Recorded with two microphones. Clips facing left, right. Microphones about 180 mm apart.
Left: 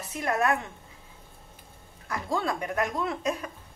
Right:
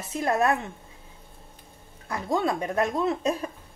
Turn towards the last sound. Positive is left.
turn(degrees=-30)  # may be behind; listen again after turning